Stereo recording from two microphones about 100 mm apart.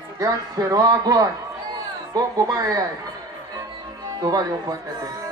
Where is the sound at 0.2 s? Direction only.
40° right (ahead or behind).